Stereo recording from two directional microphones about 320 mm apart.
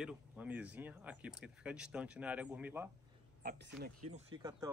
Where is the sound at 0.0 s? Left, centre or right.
Centre.